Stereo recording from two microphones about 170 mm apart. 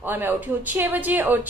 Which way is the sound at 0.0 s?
10° right (ahead or behind).